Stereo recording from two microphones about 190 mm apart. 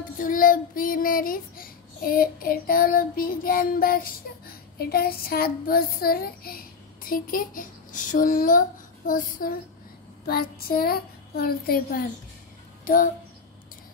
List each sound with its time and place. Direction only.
0.2 s child singing: 45° left (ahead or behind)
12.8 s music: 45° left (ahead or behind)